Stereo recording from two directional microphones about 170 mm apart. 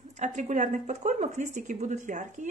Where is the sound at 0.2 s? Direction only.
45° right (ahead or behind).